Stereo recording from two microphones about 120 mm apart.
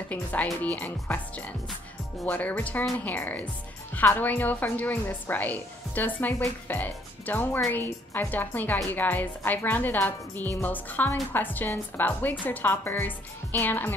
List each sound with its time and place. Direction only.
0.1 s a woman's voice: 15° left (ahead or behind)